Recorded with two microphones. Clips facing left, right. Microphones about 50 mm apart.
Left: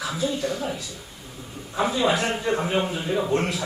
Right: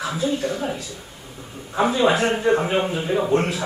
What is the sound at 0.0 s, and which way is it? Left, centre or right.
A man's voice, right.